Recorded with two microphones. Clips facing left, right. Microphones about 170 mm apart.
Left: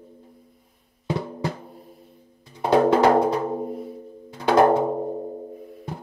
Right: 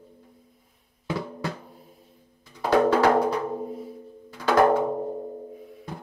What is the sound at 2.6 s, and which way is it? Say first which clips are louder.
Drum: left 2 dB; 25° left (ahead or behind).